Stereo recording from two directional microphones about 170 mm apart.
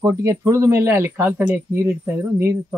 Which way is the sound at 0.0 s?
20° right (ahead or behind).